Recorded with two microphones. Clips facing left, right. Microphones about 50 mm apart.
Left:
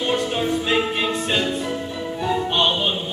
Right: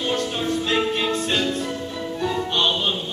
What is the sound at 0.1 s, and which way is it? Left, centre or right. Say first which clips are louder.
Music: left 3 dB; centre.